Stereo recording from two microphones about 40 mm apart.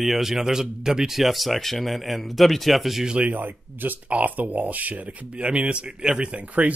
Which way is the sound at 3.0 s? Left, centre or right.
Right.